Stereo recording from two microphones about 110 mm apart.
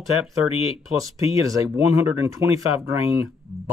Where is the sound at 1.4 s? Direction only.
30° right (ahead or behind).